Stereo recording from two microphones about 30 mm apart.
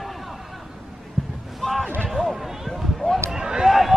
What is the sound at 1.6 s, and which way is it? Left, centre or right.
Basketball bounce, left.